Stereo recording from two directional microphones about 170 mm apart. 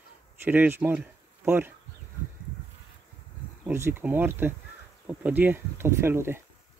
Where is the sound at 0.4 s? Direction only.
10° right (ahead or behind).